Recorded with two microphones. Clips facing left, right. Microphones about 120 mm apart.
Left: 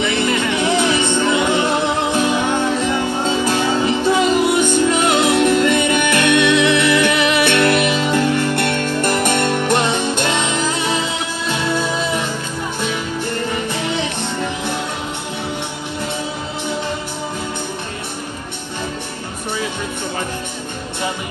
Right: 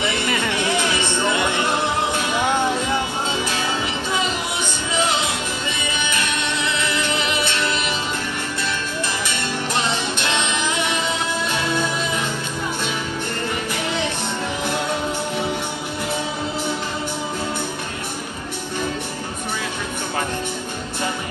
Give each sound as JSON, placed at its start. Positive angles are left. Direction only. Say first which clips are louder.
{"t": 1.0, "sound": "music", "louder": "left 4 dB", "side_deg": 20}
{"t": 3.4, "sound": "music", "louder": "left 7 dB", "side_deg": 40}
{"t": 4.8, "sound": "music", "louder": "left 7 dB", "side_deg": 60}